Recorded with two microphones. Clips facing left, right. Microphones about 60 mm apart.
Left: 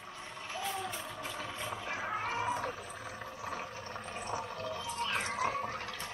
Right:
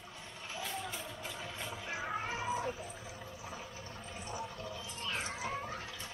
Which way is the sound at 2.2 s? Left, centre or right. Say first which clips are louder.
Left 3 dB; left.